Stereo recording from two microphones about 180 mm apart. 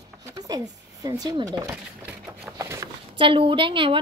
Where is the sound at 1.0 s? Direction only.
20° right (ahead or behind).